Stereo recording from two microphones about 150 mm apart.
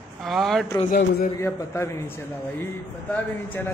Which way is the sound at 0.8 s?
65° left (ahead or behind).